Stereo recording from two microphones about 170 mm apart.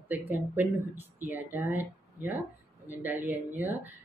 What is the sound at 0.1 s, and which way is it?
Speech, 10° right (ahead or behind).